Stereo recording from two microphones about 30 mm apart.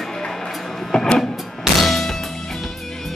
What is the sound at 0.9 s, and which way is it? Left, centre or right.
Music, left.